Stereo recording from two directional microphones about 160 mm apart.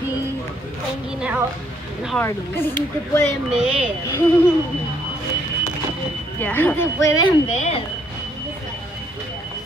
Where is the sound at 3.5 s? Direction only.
5° right (ahead or behind).